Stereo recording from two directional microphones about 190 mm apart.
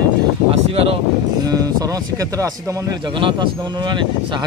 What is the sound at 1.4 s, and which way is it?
Speech, 20° right (ahead or behind).